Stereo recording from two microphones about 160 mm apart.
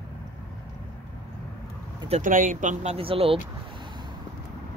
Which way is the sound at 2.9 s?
35° right (ahead or behind).